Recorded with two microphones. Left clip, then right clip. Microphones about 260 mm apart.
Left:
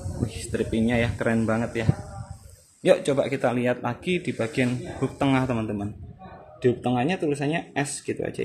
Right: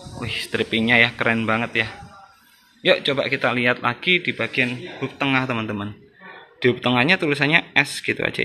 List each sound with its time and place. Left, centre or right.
0.5 s a man's voice: centre; by 5.4 s left
5.4 s a man's voice: centre